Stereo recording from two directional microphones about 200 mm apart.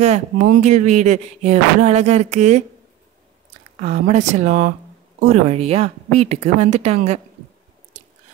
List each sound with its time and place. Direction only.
0.0 s speech: 40° right (ahead or behind)
3.8 s speech: 35° right (ahead or behind)